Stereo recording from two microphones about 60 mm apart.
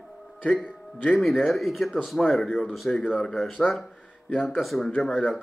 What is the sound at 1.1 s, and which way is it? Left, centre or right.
A man's voice, centre.